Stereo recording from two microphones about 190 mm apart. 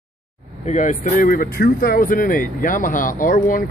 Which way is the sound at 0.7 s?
40° left (ahead or behind).